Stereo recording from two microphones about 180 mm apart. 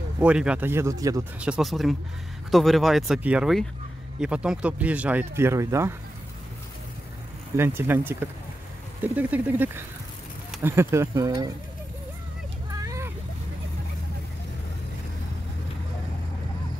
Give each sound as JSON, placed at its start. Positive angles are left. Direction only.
{"t": 0.2, "sound": "speech", "side_deg": -5}
{"t": 1.4, "sound": "speech", "side_deg": -5}
{"t": 7.5, "sound": "speech", "side_deg": -15}
{"t": 12.7, "sound": "vehicle", "side_deg": -15}